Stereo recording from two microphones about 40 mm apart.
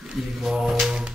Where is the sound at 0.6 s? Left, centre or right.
Centre.